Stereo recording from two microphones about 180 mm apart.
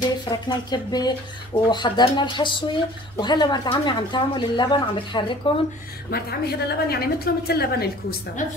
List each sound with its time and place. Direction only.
0.2 s speech: 25° left (ahead or behind)
6.0 s a woman's voice: 60° left (ahead or behind)
8.4 s a woman's voice: 45° left (ahead or behind)